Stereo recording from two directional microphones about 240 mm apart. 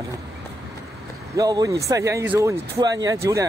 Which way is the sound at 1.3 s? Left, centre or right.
Centre.